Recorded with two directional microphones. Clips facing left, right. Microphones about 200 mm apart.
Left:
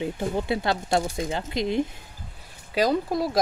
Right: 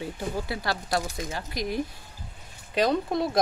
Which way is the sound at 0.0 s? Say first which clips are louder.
Left 5 dB; 25° left (ahead or behind).